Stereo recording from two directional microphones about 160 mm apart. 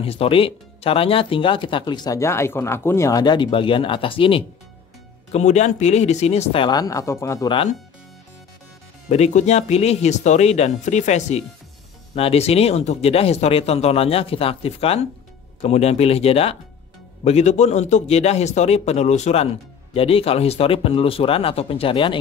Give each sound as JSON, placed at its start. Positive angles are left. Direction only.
{"t": 0.0, "sound": "a man's voice", "side_deg": 35}
{"t": 5.3, "sound": "a man's voice", "side_deg": 45}
{"t": 9.1, "sound": "a man's voice", "side_deg": 45}